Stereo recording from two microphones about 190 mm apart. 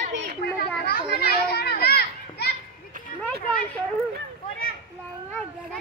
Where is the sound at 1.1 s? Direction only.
55° left (ahead or behind).